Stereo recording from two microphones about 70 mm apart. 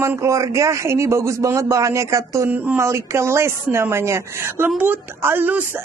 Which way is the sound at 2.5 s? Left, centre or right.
Right.